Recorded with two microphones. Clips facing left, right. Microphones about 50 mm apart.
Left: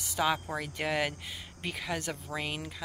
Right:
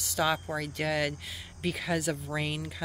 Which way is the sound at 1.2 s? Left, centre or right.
Centre.